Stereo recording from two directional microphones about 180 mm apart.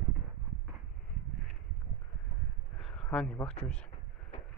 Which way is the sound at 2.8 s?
5° left (ahead or behind).